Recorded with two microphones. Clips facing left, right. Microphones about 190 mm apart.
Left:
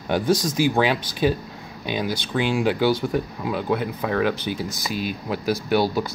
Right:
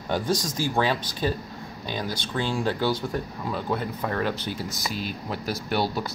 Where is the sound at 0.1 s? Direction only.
5° left (ahead or behind).